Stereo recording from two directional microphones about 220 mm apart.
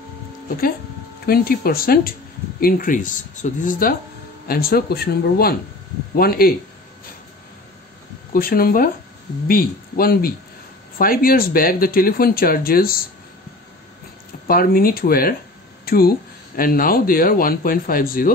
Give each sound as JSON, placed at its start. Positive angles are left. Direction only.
{"t": 1.2, "sound": "speech", "side_deg": 45}
{"t": 8.3, "sound": "speech", "side_deg": 40}
{"t": 14.5, "sound": "speech", "side_deg": 40}
{"t": 15.8, "sound": "a sound", "side_deg": 45}
{"t": 16.5, "sound": "speech", "side_deg": 40}